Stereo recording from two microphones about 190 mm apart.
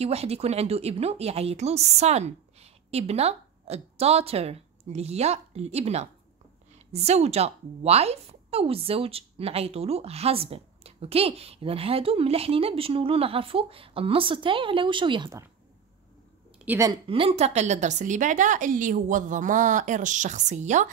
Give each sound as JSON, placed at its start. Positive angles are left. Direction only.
{"t": 0.0, "sound": "a woman's voice", "side_deg": -35}
{"t": 16.5, "sound": "speech", "side_deg": -10}
{"t": 17.1, "sound": "a woman's voice", "side_deg": -30}